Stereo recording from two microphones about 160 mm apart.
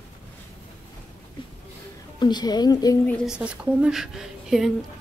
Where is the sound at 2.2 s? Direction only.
25° left (ahead or behind).